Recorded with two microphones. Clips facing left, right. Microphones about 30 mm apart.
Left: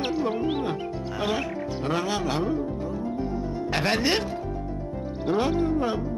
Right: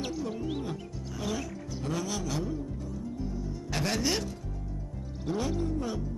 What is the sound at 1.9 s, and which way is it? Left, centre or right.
Music, left.